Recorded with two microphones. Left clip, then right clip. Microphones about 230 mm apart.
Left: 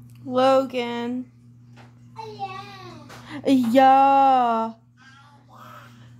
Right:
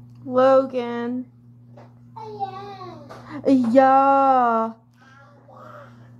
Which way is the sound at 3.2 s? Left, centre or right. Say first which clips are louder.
Right 2 dB; centre.